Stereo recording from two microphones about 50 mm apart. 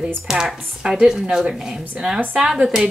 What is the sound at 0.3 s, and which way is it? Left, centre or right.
A woman's voice, centre.